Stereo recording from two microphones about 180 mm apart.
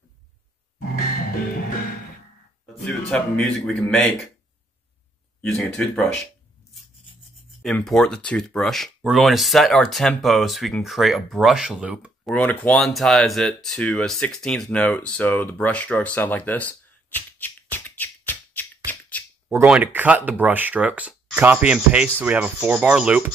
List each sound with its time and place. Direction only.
0.9 s music: 55° left (ahead or behind)
3.1 s speech: 5° left (ahead or behind)
5.4 s speech: 5° left (ahead or behind)
7.6 s speech: 5° left (ahead or behind)
12.4 s speech: 10° left (ahead or behind)
19.5 s speech: 10° right (ahead or behind)